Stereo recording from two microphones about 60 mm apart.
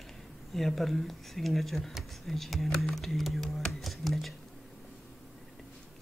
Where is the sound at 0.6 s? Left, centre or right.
Centre.